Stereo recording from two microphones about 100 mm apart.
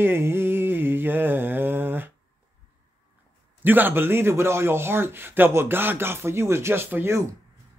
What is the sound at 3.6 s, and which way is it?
Speech, 20° right (ahead or behind).